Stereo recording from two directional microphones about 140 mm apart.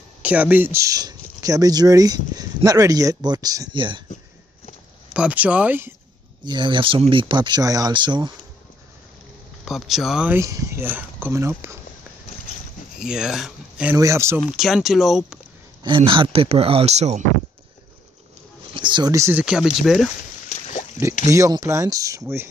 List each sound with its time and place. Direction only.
0.2 s speech: 10° right (ahead or behind); by 4.0 s 35° right (ahead or behind)
5.1 s speech: 10° right (ahead or behind)
6.4 s speech: 35° right (ahead or behind)
9.7 s speech: centre (ahead or behind)
10.3 s speech: 25° right (ahead or behind)
13.0 s speech: 5° right (ahead or behind)
13.9 s speech: 20° right (ahead or behind)
14.5 s speech: centre (ahead or behind)
15.8 s speech: 35° right (ahead or behind); by 17.2 s 50° right (ahead or behind)
18.7 s a sound: 35° right (ahead or behind)
19.1 s speech: 20° right (ahead or behind)
19.4 s speech: 5° right (ahead or behind)
20.4 s a sound: 55° left (ahead or behind)
21.3 s speech: 25° right (ahead or behind)